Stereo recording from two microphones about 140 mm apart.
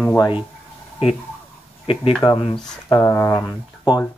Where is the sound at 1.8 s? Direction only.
40° left (ahead or behind).